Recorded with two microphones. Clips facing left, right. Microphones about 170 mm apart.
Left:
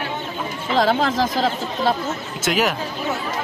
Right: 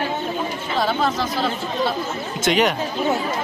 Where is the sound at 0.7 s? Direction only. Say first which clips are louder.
Left 4 dB; 90° left.